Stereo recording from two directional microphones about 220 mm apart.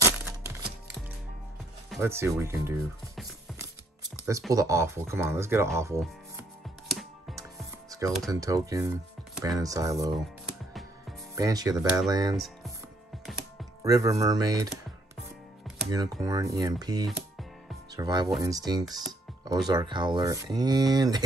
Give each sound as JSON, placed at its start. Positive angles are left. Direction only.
{"t": 0.0, "sound": "chopping", "side_deg": -10}
{"t": 2.0, "sound": "music", "side_deg": -10}
{"t": 4.5, "sound": "speech", "side_deg": -15}
{"t": 6.9, "sound": "music", "side_deg": 0}
{"t": 8.3, "sound": "speech", "side_deg": -15}
{"t": 11.3, "sound": "speech", "side_deg": -15}
{"t": 11.7, "sound": "speech", "side_deg": 0}
{"t": 12.1, "sound": "speech", "side_deg": -15}
{"t": 13.8, "sound": "speech", "side_deg": -15}
{"t": 15.9, "sound": "speech", "side_deg": -15}